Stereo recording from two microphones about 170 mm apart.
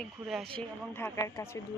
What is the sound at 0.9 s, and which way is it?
Speech, 15° left (ahead or behind).